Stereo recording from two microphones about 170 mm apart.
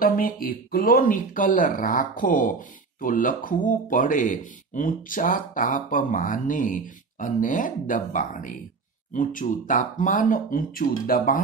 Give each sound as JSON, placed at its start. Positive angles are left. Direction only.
{"t": 0.0, "sound": "speech", "side_deg": 55}